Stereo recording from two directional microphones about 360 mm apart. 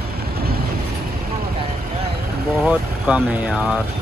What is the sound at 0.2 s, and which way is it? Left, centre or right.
Vehicle, right.